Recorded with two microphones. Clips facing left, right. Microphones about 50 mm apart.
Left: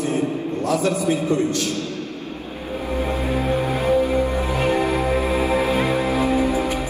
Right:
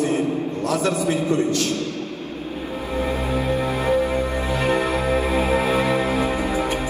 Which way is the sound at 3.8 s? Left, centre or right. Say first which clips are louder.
Left 3 dB; right.